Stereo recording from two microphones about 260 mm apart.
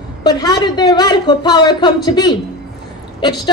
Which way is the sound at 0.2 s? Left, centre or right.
Centre.